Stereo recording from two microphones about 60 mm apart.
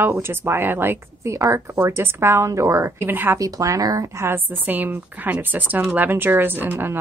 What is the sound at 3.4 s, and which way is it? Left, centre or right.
Speech, right.